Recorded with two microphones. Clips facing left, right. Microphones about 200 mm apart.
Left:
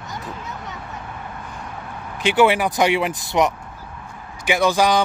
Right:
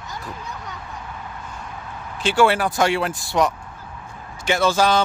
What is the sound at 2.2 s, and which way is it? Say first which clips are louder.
Speech: left 1 dB; 15° left (ahead or behind).